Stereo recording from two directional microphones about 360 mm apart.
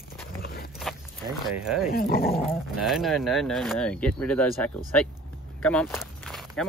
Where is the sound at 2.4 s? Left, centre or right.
Centre.